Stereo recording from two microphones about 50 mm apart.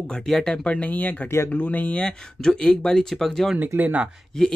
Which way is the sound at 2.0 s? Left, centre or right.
Centre.